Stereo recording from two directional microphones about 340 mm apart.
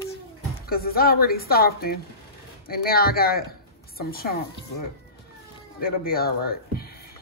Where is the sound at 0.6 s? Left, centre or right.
Left.